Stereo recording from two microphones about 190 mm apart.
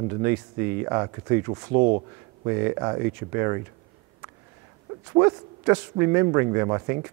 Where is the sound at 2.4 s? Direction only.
15° right (ahead or behind).